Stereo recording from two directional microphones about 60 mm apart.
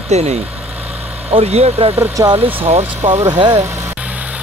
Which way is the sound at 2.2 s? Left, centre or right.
Right.